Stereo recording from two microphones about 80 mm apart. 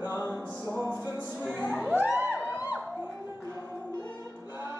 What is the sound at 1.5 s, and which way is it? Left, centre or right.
Crowd, centre.